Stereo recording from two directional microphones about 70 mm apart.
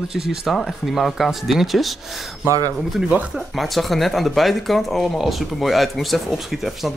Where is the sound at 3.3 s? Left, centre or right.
Centre.